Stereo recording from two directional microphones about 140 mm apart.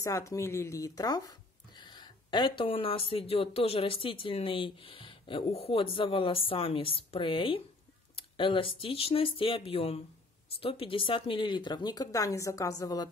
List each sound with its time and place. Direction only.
0.0 s speech: 20° left (ahead or behind)